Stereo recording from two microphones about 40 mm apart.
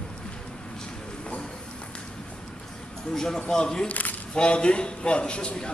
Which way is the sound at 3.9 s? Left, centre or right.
Left.